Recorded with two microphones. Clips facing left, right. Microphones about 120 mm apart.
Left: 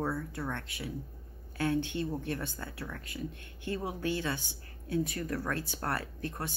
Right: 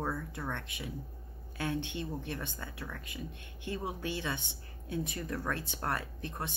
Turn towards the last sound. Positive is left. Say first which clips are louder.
# left 2 dB
turn(degrees=-20)  # may be behind; listen again after turning